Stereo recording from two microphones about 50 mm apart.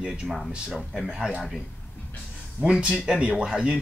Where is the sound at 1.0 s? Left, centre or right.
Centre.